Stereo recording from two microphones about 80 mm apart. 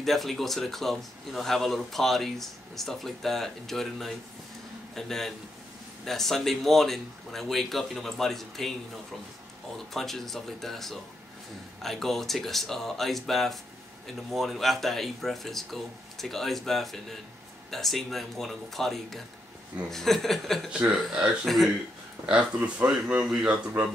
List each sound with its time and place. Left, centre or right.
0.0 s speech: centre
9.9 s speech: centre
22.2 s speech: centre